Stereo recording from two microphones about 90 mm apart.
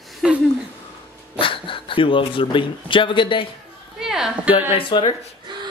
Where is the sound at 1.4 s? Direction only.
75° left (ahead or behind).